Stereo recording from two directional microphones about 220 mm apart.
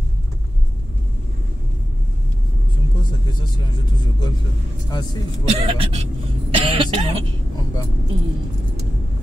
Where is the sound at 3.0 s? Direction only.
20° left (ahead or behind).